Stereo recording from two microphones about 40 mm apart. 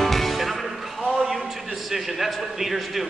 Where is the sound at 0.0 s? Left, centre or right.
Centre.